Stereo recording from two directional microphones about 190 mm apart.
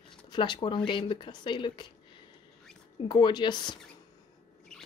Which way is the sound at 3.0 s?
25° left (ahead or behind).